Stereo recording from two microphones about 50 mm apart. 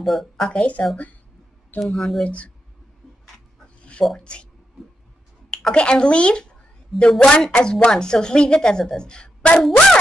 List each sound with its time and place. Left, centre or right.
0.0 s speech: centre
0.5 s speech: left
1.8 s speech: centre
2.2 s speech: left
3.6 s dog: left
4.2 s speech: centre
5.5 s a woman's voice: centre